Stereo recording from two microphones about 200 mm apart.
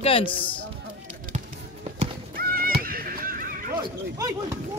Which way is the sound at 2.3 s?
50° right (ahead or behind).